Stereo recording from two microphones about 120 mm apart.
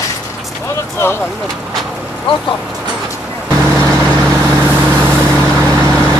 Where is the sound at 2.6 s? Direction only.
5° right (ahead or behind).